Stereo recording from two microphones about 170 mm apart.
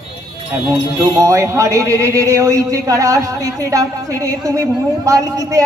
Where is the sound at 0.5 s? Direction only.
20° right (ahead or behind).